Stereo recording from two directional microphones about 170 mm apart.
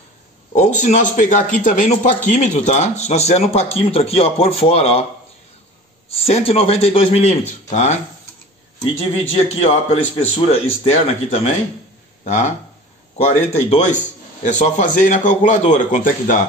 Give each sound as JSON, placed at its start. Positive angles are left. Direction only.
{"t": 0.5, "sound": "a man's voice", "side_deg": 45}
{"t": 6.0, "sound": "a man's voice", "side_deg": 35}
{"t": 8.9, "sound": "a man's voice", "side_deg": 35}